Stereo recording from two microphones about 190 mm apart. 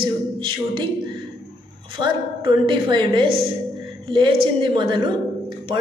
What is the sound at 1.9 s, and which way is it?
Speech, 25° right (ahead or behind).